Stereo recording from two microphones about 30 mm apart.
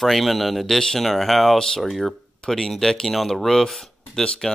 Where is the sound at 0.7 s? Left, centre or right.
Centre.